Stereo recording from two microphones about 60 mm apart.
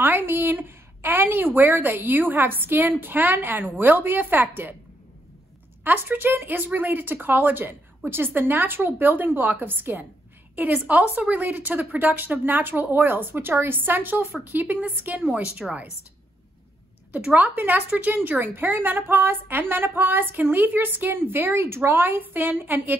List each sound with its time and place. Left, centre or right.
0.0 s a woman's voice: right
5.9 s a woman's voice: right
10.7 s a woman's voice: right
15.6 s a woman's voice: centre
17.1 s a woman's voice: right